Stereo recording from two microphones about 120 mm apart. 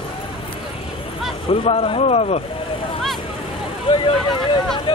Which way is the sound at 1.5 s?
55° left (ahead or behind).